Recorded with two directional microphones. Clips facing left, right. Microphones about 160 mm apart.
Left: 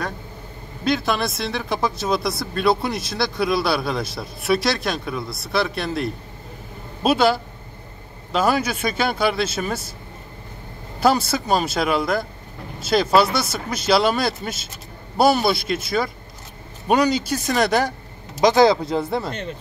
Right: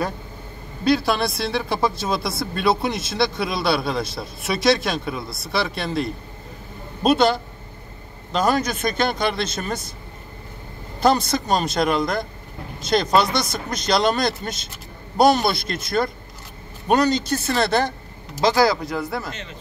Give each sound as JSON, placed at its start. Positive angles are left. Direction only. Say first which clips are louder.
{"t": 0.8, "sound": "a man's voice", "louder": "right 2 dB", "side_deg": 0}
{"t": 11.0, "sound": "a man's voice", "louder": "even", "side_deg": 5}
{"t": 18.4, "sound": "speech", "louder": "left 3 dB", "side_deg": 20}